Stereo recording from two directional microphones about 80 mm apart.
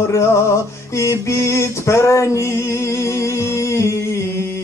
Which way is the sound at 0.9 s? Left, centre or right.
Left.